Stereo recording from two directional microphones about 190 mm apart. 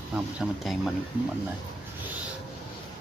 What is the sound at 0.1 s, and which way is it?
Speech, 5° right (ahead or behind).